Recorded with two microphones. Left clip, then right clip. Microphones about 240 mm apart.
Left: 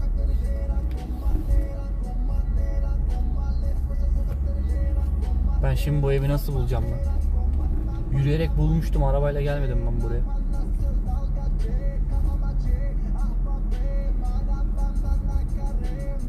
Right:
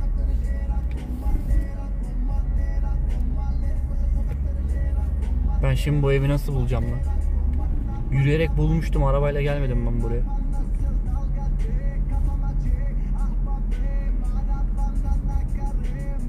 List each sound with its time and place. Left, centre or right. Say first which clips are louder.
5.6 s speech: right 2 dB; centre
8.2 s speech: right 4 dB; right